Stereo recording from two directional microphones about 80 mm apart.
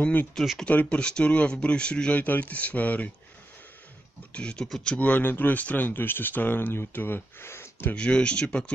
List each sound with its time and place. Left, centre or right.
0.0 s speech: left
0.3 s speech: centre
0.7 s speech: centre
4.3 s speech: centre
4.9 s speech: centre
7.9 s speech: centre